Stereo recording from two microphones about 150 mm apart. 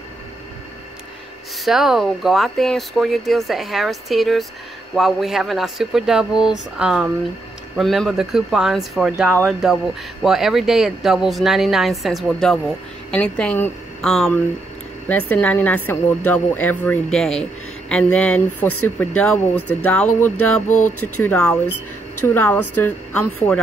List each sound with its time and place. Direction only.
1.6 s a woman's voice: centre (ahead or behind)
20.6 s speech: 55° left (ahead or behind)
21.2 s a woman's voice: 10° left (ahead or behind)